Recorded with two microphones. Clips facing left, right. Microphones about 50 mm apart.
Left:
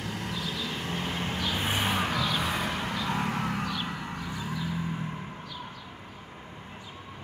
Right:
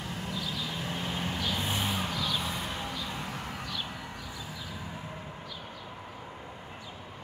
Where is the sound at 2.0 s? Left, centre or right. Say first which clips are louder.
Left 4 dB; left.